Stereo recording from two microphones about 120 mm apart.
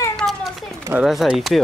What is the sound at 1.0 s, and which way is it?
Speech, centre (ahead or behind).